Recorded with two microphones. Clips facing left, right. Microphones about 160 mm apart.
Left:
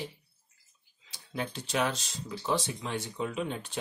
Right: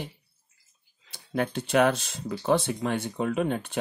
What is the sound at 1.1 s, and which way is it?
Speech, 55° right (ahead or behind).